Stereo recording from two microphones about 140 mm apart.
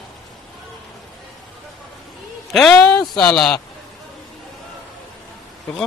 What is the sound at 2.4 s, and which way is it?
A woman's voice, centre (ahead or behind).